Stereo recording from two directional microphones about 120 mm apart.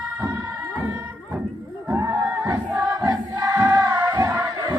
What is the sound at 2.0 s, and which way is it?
Choir, 25° right (ahead or behind).